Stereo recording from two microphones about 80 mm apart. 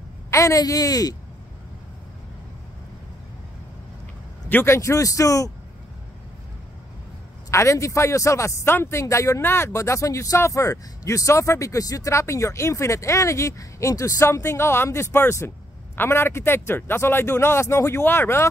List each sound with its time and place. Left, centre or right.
0.3 s speech: left
4.5 s speech: left
7.5 s speech: left